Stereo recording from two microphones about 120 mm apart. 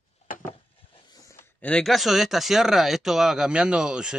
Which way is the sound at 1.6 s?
5° left (ahead or behind).